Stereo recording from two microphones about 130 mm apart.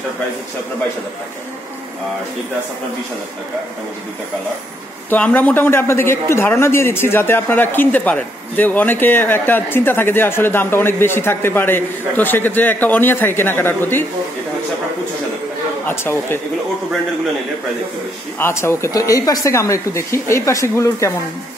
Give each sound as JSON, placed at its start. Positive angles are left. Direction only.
{"t": 5.1, "sound": "a man's voice", "side_deg": 10}
{"t": 15.9, "sound": "speech", "side_deg": 20}
{"t": 18.4, "sound": "speech", "side_deg": 20}